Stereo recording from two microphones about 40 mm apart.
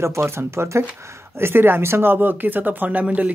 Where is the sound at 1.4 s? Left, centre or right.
Right.